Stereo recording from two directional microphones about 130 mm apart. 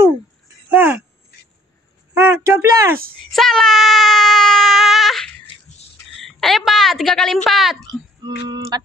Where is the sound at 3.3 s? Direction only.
Centre (ahead or behind).